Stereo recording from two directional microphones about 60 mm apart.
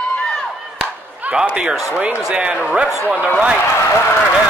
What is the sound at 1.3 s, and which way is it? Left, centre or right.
Speech, centre.